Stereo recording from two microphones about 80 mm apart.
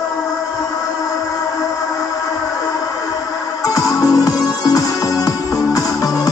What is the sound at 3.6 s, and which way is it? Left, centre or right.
Music, left.